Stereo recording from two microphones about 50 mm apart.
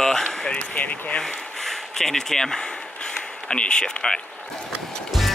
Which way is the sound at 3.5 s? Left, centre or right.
Centre.